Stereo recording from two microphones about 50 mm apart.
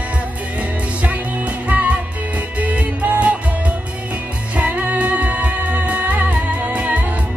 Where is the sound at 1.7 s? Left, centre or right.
Right.